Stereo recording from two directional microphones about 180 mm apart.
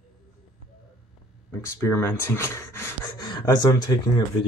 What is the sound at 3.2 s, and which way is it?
Speech, 25° left (ahead or behind).